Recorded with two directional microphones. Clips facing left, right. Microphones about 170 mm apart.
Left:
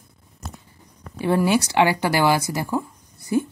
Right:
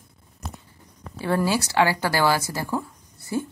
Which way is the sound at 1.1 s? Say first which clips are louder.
Left 4 dB; 20° left (ahead or behind).